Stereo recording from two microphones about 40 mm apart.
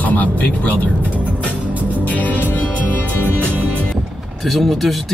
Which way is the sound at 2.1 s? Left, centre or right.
Left.